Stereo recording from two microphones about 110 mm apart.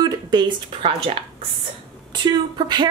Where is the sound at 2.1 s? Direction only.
40° right (ahead or behind).